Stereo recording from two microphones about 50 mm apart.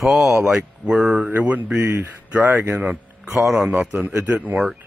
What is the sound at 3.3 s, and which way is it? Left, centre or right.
Speech, centre.